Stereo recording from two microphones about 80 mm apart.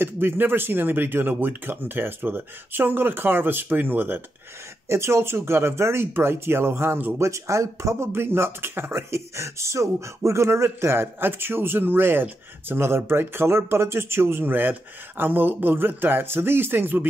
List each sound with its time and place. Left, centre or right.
0.0 s speech: right
7.2 s speech: right